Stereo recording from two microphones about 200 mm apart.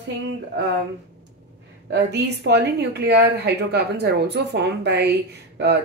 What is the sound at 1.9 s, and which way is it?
Speech, 60° right (ahead or behind).